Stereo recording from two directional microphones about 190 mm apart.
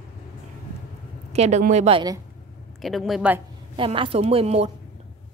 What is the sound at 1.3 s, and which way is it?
Speech, 35° right (ahead or behind).